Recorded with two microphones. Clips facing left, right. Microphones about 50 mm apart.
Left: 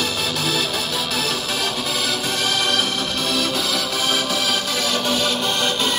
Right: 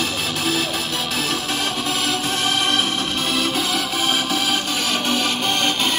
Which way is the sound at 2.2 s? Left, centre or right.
Right.